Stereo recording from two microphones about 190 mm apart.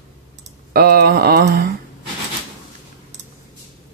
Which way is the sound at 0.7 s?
50° right (ahead or behind).